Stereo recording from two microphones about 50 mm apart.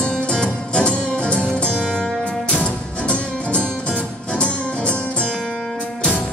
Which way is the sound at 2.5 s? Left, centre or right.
Left.